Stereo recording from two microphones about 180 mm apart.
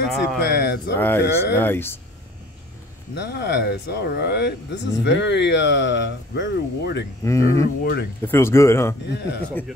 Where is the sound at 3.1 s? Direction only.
70° left (ahead or behind).